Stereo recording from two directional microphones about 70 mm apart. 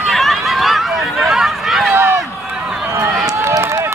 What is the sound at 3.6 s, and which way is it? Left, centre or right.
Run, right.